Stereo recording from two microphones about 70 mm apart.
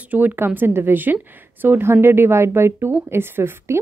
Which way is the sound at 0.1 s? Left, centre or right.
Right.